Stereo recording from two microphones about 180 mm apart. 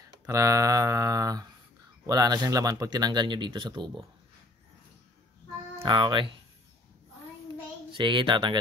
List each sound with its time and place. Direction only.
0.3 s speech: 20° right (ahead or behind)
5.8 s speech: 25° right (ahead or behind)
7.9 s speech: 25° right (ahead or behind)